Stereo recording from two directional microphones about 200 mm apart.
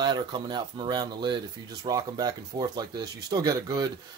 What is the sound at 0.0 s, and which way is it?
Speech, 20° right (ahead or behind).